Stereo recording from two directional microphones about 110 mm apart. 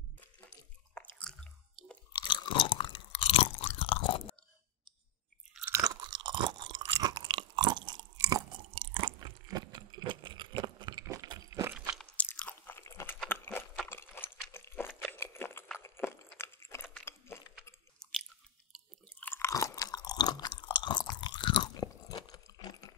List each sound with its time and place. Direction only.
1.3 s chewing: 5° left (ahead or behind)
2.1 s chewing: 45° left (ahead or behind)
5.9 s chewing: 40° right (ahead or behind)
9.5 s a sound: 40° right (ahead or behind)
12.0 s chewing: 10° left (ahead or behind)
12.3 s crunch: 20° left (ahead or behind)
13.3 s horse: 20° left (ahead or behind)
13.8 s a sound: 20° left (ahead or behind)
19.1 s chewing: 20° left (ahead or behind)
19.5 s chewing: 30° left (ahead or behind); by 21.6 s 45° left (ahead or behind)
21.7 s chewing: 35° left (ahead or behind)